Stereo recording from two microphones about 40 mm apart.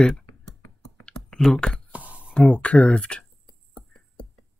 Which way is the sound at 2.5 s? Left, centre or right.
Left.